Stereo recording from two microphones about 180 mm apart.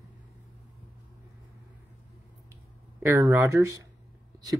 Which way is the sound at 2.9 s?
15° right (ahead or behind).